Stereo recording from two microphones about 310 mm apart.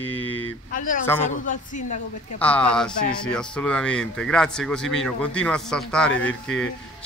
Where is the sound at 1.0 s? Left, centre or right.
Centre.